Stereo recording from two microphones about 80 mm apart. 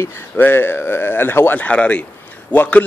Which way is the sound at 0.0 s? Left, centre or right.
Left.